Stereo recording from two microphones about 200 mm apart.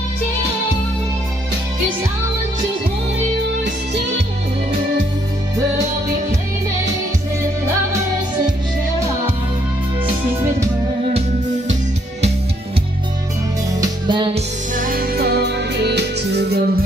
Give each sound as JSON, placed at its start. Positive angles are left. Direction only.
{"t": 13.7, "sound": "music", "side_deg": -25}
{"t": 14.8, "sound": "music", "side_deg": -45}